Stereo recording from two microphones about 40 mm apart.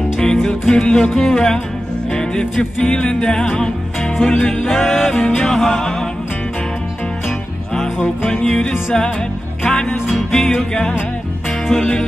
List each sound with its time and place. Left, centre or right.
0.2 s music: centre
2.8 s music: left
8.5 s music: centre